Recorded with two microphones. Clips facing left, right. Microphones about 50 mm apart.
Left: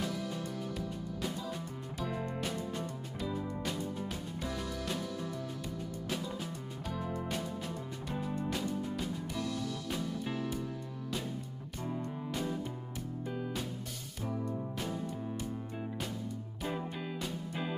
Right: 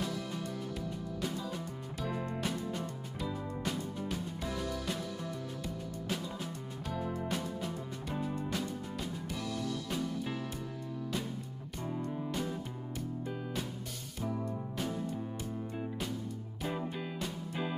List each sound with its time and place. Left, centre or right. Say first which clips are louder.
0.5 s music: left 1 dB; centre
2.0 s music: even; centre
10.2 s music: left 2 dB; centre
11.8 s music: right 1 dB; centre
16.6 s music: right 1 dB; centre